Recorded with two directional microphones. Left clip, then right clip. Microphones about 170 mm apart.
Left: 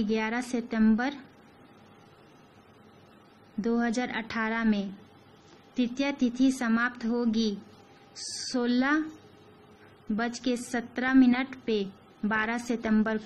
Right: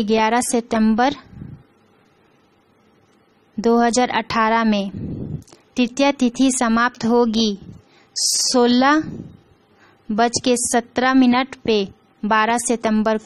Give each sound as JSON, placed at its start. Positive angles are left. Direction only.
{"t": 0.0, "sound": "a woman's voice", "side_deg": -60}
{"t": 3.6, "sound": "a woman's voice", "side_deg": -60}
{"t": 10.1, "sound": "a woman's voice", "side_deg": -60}